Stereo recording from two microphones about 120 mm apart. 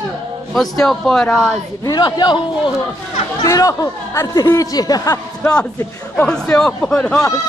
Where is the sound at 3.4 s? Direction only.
30° left (ahead or behind).